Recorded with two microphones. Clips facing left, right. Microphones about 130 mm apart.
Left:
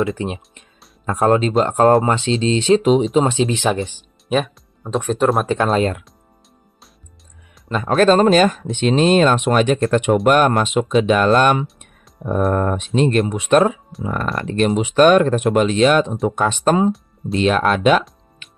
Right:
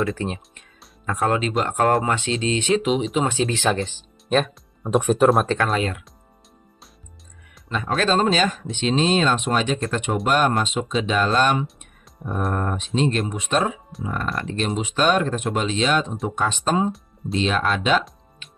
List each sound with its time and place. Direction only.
0.0 s speech: 20° left (ahead or behind)
1.0 s speech: 35° left (ahead or behind); by 4.5 s 10° left (ahead or behind)
4.8 s speech: 5° right (ahead or behind)
5.8 s speech: 40° left (ahead or behind)
7.6 s speech: 45° left (ahead or behind)
12.5 s speech: 60° left (ahead or behind)
17.3 s speech: 55° left (ahead or behind)